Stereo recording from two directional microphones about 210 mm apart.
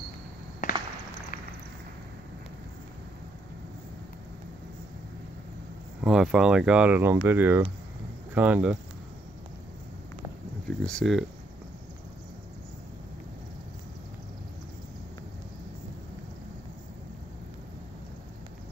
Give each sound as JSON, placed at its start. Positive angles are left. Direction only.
{"t": 0.6, "sound": "walk", "side_deg": 40}
{"t": 5.9, "sound": "speech", "side_deg": -5}
{"t": 10.9, "sound": "speech", "side_deg": 0}